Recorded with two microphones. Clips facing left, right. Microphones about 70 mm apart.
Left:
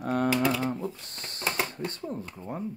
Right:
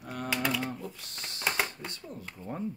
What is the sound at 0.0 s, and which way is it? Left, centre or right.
Typing, left.